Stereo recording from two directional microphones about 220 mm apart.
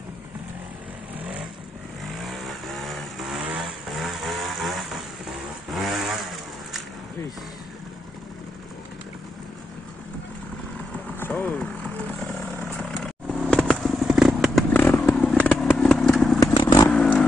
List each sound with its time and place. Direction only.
2.2 s vehicle: centre (ahead or behind)
5.8 s vehicle: centre (ahead or behind)
11.1 s vehicle: 10° left (ahead or behind)
13.0 s a sound: centre (ahead or behind)
14.7 s motorcycle: 10° left (ahead or behind)
16.5 s vehicle: 20° left (ahead or behind)
16.9 s vehicle: 5° left (ahead or behind)